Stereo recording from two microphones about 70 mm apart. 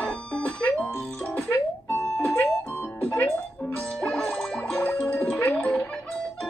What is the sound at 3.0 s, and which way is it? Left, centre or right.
Music, centre.